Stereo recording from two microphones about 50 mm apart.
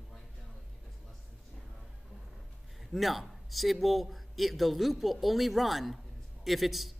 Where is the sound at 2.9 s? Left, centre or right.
Centre.